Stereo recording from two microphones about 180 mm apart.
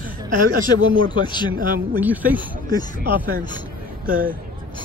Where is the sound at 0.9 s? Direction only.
25° left (ahead or behind).